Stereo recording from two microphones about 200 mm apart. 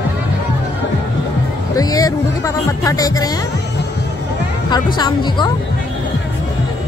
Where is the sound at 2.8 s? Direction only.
15° left (ahead or behind).